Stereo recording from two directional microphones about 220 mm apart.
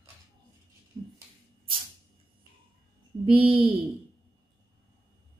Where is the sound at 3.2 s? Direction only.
25° right (ahead or behind).